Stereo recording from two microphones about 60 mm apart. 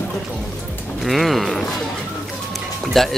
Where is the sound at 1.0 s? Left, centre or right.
Centre.